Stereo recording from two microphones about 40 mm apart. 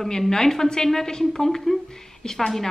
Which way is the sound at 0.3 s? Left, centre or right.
Centre.